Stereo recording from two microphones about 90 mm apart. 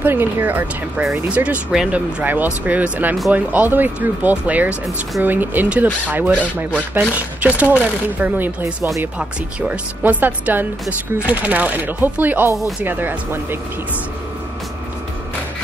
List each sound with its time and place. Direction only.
0.0 s speech: 25° right (ahead or behind)